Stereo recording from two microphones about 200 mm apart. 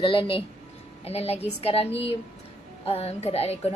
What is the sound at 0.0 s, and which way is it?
A woman's voice, 25° left (ahead or behind).